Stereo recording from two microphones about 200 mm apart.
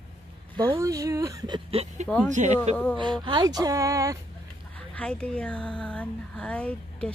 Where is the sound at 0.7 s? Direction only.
15° right (ahead or behind); by 2.7 s 35° right (ahead or behind).